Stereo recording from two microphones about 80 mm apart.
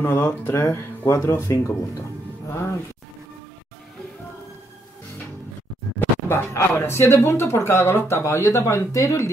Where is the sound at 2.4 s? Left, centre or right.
Left.